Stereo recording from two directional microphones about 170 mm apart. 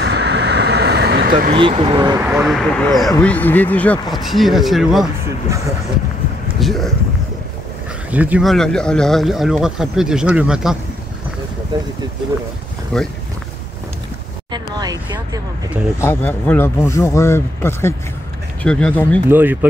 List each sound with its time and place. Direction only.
0.0 s vehicle: 80° right; by 1.5 s 60° right (ahead or behind)
1.5 s speech: 30° right (ahead or behind)
2.4 s speech: centre (ahead or behind)
6.6 s speech: centre (ahead or behind)
8.1 s speech: 10° right (ahead or behind)
12.9 s speech: 5° left (ahead or behind)
14.5 s vehicle: 25° right (ahead or behind)
16.0 s speech: 10° left (ahead or behind)
19.2 s speech: 10° right (ahead or behind)